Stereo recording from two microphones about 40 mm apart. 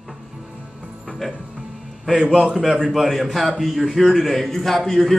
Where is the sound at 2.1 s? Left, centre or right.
Centre.